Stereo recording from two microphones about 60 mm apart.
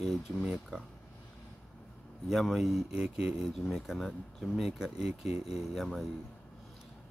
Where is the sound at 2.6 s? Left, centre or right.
Centre.